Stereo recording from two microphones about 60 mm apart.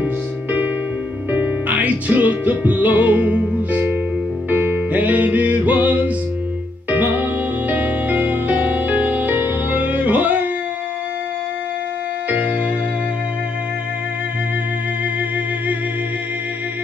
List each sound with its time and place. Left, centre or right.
0.0 s music: right
12.3 s music: right